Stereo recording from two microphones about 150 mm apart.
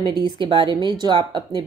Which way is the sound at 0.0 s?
30° right (ahead or behind).